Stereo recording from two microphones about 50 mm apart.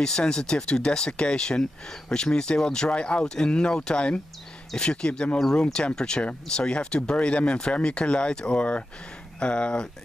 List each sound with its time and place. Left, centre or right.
0.0 s speech: centre